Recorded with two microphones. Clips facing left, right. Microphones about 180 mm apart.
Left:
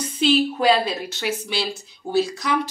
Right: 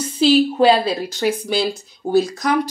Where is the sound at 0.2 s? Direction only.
30° right (ahead or behind).